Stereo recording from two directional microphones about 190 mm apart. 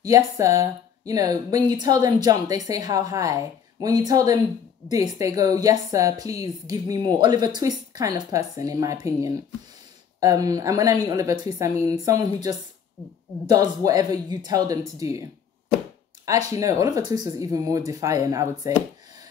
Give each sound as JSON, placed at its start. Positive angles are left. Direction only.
{"t": 0.0, "sound": "a woman's voice", "side_deg": -15}
{"t": 16.3, "sound": "speech", "side_deg": -15}